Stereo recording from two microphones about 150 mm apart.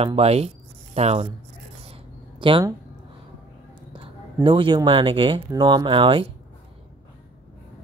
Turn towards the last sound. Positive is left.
turn(degrees=-35)  # may be behind; listen again after turning